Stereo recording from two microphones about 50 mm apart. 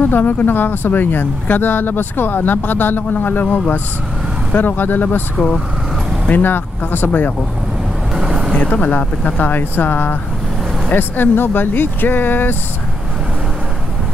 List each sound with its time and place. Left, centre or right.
0.0 s speech: left
6.2 s speech: left
8.5 s speech: left